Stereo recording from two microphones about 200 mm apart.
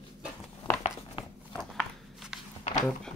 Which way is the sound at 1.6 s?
Centre (ahead or behind).